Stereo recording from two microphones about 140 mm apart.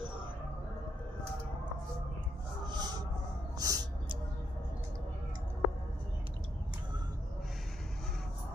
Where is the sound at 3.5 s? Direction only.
25° right (ahead or behind).